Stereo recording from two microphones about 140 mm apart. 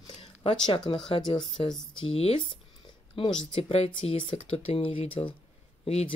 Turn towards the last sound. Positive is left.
turn(degrees=50)  # may be behind; listen again after turning